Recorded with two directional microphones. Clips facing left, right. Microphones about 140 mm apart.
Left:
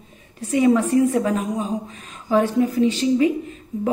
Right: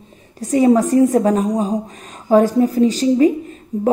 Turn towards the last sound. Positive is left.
turn(degrees=-35)  # may be behind; listen again after turning